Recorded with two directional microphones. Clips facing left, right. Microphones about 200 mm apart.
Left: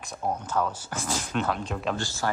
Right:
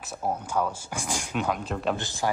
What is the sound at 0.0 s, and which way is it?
Speech, 5° right (ahead or behind).